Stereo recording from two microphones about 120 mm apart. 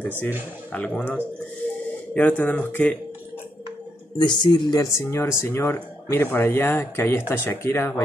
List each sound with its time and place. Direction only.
0.7 s speech: 10° left (ahead or behind)
4.2 s speech: 40° left (ahead or behind); by 8.0 s 20° left (ahead or behind)